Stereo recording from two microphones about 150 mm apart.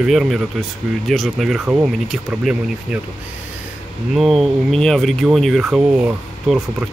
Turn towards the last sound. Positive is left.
turn(degrees=-5)  # may be behind; listen again after turning